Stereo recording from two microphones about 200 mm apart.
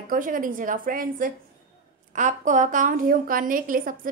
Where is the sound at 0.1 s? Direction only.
40° right (ahead or behind).